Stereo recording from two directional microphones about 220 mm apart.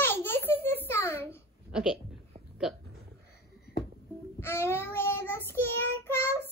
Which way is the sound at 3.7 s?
45° left (ahead or behind).